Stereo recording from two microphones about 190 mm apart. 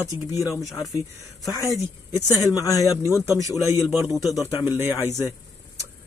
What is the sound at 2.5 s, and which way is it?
Speech, 15° left (ahead or behind).